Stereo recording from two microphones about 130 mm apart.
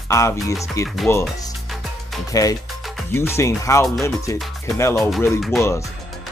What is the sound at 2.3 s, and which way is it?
Speech, 25° left (ahead or behind).